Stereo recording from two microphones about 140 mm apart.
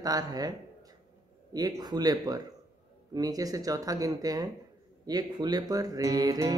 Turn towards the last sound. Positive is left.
turn(degrees=-25)  # may be behind; listen again after turning